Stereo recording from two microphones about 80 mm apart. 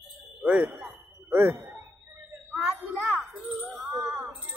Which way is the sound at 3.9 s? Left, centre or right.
Right.